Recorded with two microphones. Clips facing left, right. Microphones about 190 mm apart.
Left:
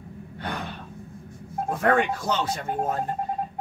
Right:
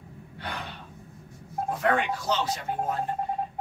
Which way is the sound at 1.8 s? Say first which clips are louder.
Left 4 dB; 50° left (ahead or behind).